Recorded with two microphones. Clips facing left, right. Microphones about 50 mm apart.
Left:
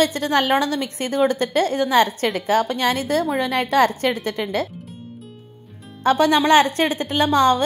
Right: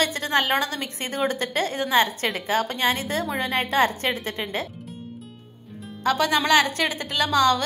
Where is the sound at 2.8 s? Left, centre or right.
Right.